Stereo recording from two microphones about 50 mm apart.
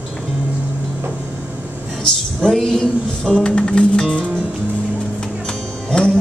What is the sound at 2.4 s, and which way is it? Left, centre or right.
Music, centre.